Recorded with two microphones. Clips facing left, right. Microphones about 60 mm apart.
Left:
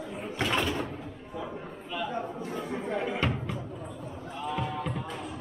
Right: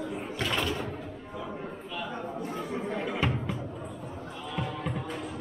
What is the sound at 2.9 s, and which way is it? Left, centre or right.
Speech, centre.